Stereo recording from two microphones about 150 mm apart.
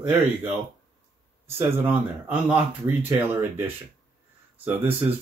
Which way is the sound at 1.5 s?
15° right (ahead or behind).